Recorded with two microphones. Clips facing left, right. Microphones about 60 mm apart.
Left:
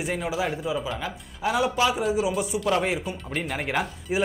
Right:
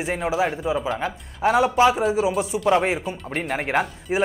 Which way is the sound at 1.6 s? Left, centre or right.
Right.